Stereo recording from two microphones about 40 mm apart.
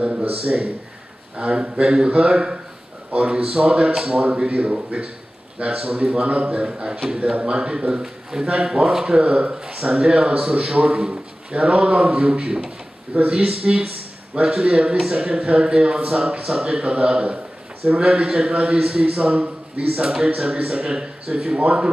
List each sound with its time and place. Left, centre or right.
0.3 s a man's voice: right
4.4 s a man's voice: right
7.2 s a man's voice: right
10.9 s speech: centre
11.5 s a man's voice: right
20.0 s a man's voice: right